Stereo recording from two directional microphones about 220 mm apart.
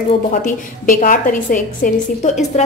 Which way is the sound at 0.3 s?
35° left (ahead or behind).